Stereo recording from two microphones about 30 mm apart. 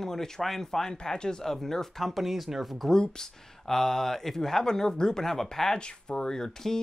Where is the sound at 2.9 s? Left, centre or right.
Left.